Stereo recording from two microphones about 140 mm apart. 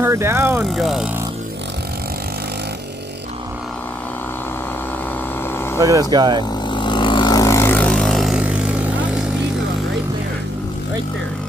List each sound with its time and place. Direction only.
0.0 s speech: 20° right (ahead or behind)
0.7 s speech: centre (ahead or behind)
5.8 s speech: 25° right (ahead or behind)
6.7 s vehicle: 35° left (ahead or behind); by 9.2 s 10° right (ahead or behind)